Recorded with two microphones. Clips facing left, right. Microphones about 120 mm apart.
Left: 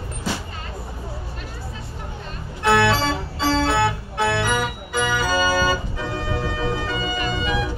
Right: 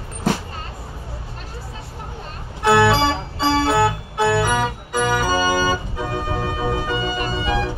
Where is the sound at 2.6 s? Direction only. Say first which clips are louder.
Right 3 dB; 5° right (ahead or behind).